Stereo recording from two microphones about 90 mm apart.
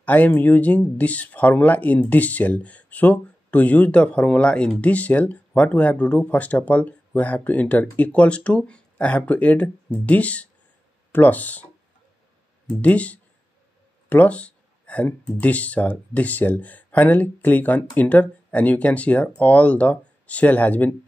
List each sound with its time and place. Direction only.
0.0 s speech: 20° left (ahead or behind)
12.8 s speech: 15° left (ahead or behind)